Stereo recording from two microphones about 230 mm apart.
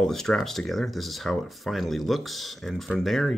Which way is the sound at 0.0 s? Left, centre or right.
Centre.